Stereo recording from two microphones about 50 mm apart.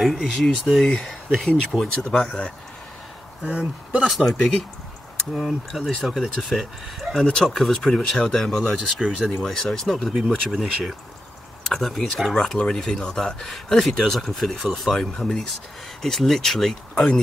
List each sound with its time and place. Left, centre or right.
0.0 s speech: centre
3.4 s speech: right
4.4 s speech: centre
5.3 s speech: centre
5.7 s speech: centre
7.2 s speech: centre
7.4 s speech: centre
12.4 s speech: centre
16.9 s speech: centre